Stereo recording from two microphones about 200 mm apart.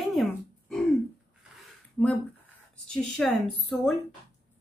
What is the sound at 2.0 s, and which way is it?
A woman's voice, 5° left (ahead or behind).